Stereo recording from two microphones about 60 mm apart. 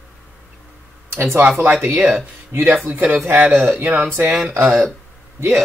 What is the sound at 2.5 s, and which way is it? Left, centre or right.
Speech, right.